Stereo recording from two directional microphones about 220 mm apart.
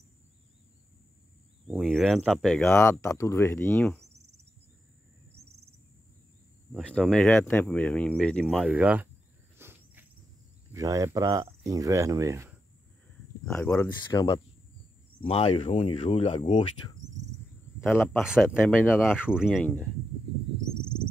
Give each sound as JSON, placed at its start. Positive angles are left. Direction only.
{"t": 1.7, "sound": "speech", "side_deg": 0}
{"t": 6.8, "sound": "speech", "side_deg": 5}
{"t": 9.6, "sound": "insect", "side_deg": -10}
{"t": 10.7, "sound": "speech", "side_deg": -15}
{"t": 13.5, "sound": "speech", "side_deg": 10}
{"t": 14.1, "sound": "speech", "side_deg": 20}
{"t": 17.7, "sound": "speech", "side_deg": -5}
{"t": 18.6, "sound": "speech", "side_deg": 5}